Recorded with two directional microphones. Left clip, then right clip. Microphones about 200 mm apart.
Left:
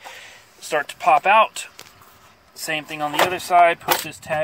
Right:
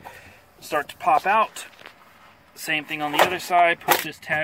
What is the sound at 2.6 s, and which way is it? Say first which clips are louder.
Speech: left 1 dB; 15° left (ahead or behind).